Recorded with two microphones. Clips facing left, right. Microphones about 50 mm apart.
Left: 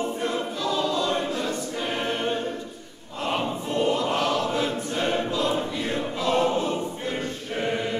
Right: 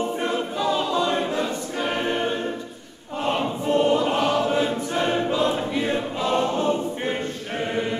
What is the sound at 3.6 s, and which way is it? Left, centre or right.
Choir, right.